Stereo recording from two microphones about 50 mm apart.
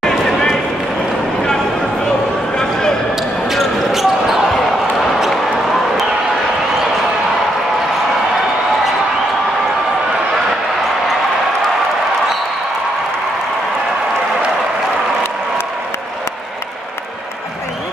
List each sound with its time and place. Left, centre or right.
3.4 s basketball bounce: centre